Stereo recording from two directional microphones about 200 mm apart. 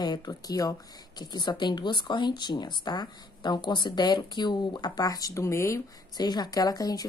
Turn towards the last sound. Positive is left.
turn(degrees=20)  # may be behind; listen again after turning